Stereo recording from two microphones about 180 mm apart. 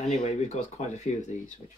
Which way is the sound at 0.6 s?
40° left (ahead or behind).